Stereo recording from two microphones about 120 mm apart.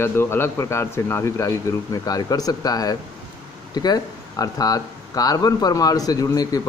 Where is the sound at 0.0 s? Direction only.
20° left (ahead or behind).